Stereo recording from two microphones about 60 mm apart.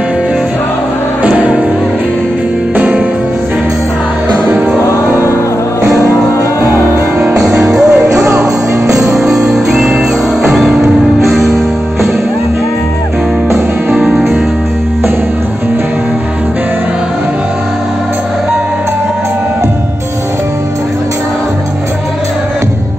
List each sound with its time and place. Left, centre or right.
1.2 s music: centre
7.3 s music: centre